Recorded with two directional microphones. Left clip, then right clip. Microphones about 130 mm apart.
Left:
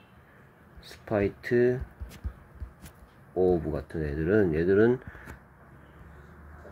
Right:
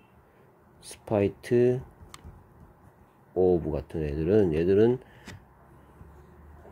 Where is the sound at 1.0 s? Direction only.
40° right (ahead or behind).